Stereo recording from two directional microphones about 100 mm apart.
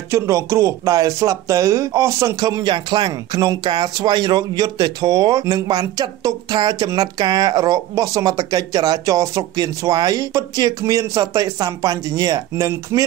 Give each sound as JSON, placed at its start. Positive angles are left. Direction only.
{"t": 0.1, "sound": "speech", "side_deg": -30}